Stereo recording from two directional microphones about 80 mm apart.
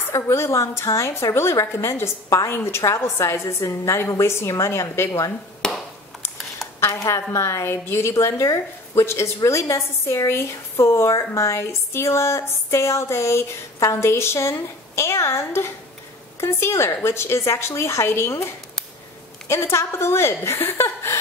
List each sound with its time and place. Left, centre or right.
0.1 s a woman's voice: left
5.6 s a sound: centre
6.8 s a woman's voice: left